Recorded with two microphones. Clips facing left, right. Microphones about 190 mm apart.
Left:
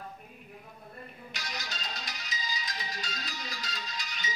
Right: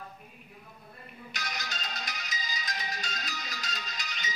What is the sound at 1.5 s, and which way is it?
Music, 50° right (ahead or behind).